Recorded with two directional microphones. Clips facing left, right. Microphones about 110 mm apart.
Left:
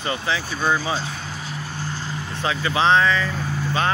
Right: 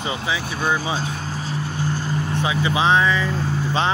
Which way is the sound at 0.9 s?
40° right (ahead or behind).